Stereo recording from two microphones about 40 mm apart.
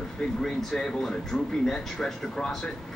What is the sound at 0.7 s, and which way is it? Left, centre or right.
Speech, centre.